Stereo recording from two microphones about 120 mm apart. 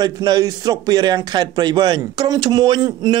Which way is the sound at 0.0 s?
35° right (ahead or behind).